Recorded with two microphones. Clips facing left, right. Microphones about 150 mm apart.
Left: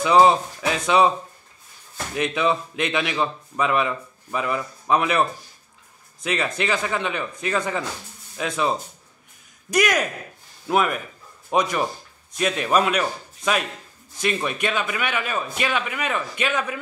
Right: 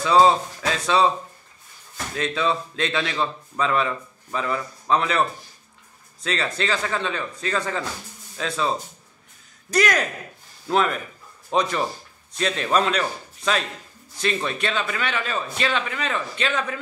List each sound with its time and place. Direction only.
0.0 s speech: 15° left (ahead or behind)
2.1 s a man's voice: 15° left (ahead or behind)
6.2 s a man's voice: 15° left (ahead or behind)